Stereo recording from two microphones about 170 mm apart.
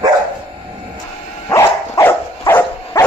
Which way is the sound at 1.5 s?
15° left (ahead or behind).